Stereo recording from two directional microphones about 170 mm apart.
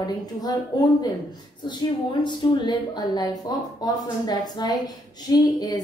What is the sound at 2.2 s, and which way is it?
A woman's voice, 25° left (ahead or behind).